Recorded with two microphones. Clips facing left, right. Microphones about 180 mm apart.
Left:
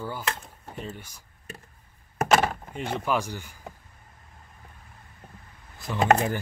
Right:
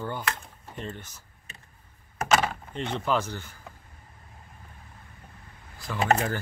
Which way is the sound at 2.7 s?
10° left (ahead or behind).